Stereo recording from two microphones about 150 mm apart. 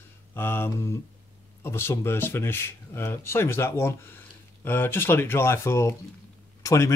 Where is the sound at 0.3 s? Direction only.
15° left (ahead or behind).